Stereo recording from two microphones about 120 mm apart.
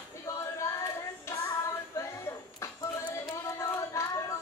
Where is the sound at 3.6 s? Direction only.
25° left (ahead or behind).